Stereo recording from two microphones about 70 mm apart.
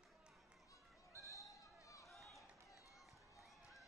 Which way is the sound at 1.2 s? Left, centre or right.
Left.